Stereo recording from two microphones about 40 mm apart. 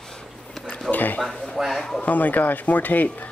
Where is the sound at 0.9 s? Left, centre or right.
Left.